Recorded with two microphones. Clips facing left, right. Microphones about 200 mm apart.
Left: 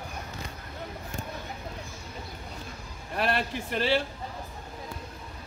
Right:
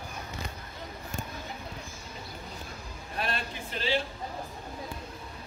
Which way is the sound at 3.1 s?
65° left (ahead or behind).